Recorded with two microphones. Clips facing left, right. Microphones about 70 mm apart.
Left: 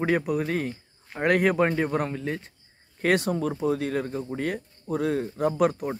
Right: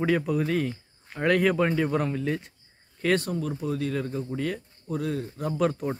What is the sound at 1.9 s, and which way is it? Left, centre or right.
Speech, centre.